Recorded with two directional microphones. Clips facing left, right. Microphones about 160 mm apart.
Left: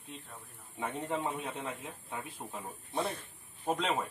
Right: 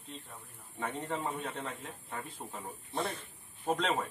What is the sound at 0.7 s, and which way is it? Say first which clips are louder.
A man's voice: left 1 dB; 10° left (ahead or behind).